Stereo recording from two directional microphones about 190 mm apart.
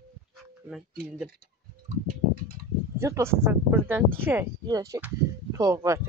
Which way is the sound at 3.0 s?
15° right (ahead or behind).